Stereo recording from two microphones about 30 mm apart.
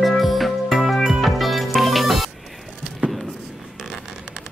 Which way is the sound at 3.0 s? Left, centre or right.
Right.